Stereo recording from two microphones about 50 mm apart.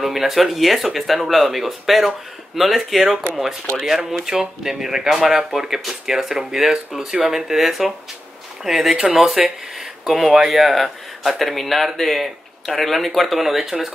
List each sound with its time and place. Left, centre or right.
0.0 s speech: centre